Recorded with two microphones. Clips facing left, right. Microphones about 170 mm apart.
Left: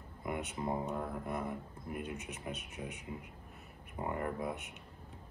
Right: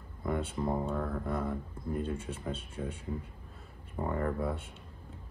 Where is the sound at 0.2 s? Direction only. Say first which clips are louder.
Right 5 dB; 15° left (ahead or behind).